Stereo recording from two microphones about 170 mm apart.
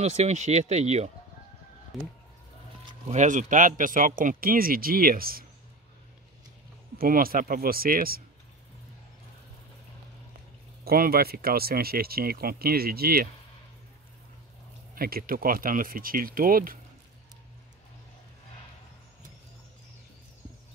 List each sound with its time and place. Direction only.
0.0 s speech: 40° right (ahead or behind)
3.1 s speech: 45° right (ahead or behind)
7.0 s speech: 55° right (ahead or behind)
10.8 s speech: 60° right (ahead or behind)
15.0 s speech: 60° right (ahead or behind)